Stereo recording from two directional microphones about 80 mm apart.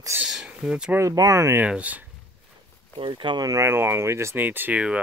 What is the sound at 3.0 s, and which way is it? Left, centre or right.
Speech, right.